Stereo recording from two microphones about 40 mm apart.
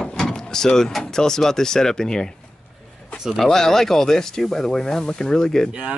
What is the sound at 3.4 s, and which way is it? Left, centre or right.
Speech, centre.